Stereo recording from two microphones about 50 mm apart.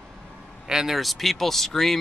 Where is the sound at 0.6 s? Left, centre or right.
Centre.